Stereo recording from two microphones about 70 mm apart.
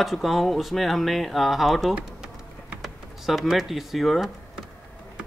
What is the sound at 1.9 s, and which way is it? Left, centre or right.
Bee, centre.